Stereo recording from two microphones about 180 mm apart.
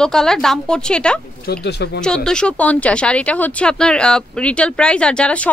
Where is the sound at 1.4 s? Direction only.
60° left (ahead or behind).